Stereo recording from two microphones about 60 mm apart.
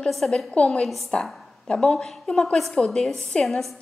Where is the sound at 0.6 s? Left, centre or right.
Centre.